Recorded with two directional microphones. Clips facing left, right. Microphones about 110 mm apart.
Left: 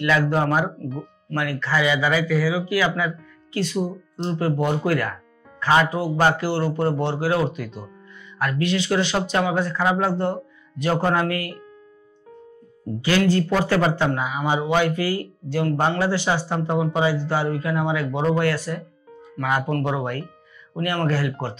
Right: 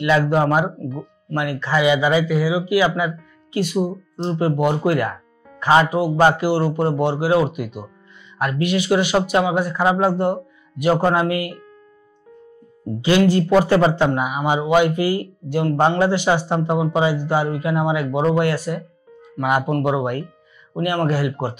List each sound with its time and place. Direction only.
0.0 s a man's voice: 20° right (ahead or behind)
13.0 s a man's voice: 20° right (ahead or behind)